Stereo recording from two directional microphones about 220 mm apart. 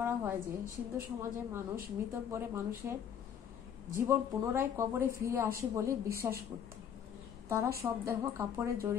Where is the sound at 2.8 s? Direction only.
10° right (ahead or behind).